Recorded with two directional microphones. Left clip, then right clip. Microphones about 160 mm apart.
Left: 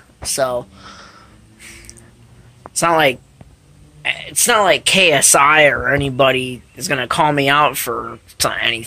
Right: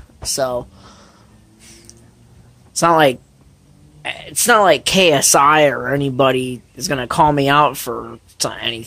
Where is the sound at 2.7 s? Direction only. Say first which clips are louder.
Right 1 dB; 40° right (ahead or behind).